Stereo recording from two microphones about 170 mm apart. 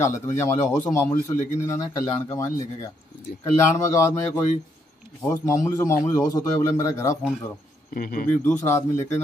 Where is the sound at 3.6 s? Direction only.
15° left (ahead or behind).